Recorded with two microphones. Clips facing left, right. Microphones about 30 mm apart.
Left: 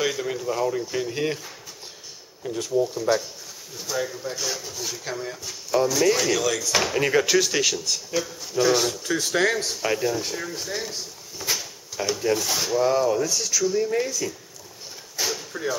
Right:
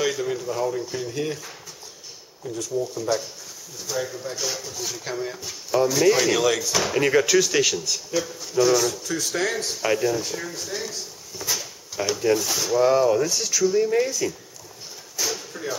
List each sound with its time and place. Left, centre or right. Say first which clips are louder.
0.0 s a man's voice: right 1 dB; centre
1.1 s speech: even; left
2.4 s speech: left 3 dB; left; by 6.7 s centre
6.9 s a man's voice: right 3 dB; centre
9.0 s speech: left 3 dB; left
9.7 s speech: right 2 dB; centre
10.5 s speech: left 1 dB; centre
11.5 s drawer open or close: right 2 dB; centre
12.7 s speech: right 3 dB; centre
15.2 s a sound: even; left
15.5 s a man's voice: left 3 dB; centre